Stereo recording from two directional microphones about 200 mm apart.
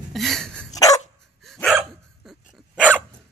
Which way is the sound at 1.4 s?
Centre (ahead or behind).